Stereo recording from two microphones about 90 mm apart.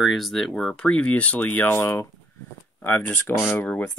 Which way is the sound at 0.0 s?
Centre (ahead or behind).